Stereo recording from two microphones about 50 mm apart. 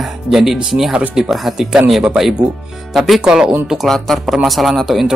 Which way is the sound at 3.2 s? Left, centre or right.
Centre.